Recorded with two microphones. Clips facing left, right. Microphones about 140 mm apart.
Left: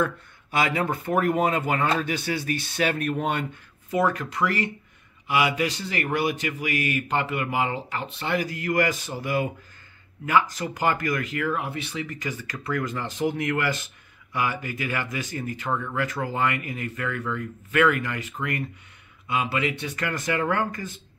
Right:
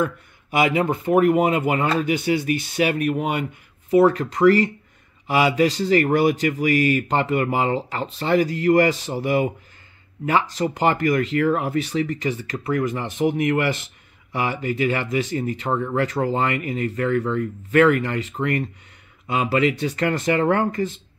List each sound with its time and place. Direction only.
0.0 s speech: 15° right (ahead or behind)
3.9 s speech: 30° right (ahead or behind)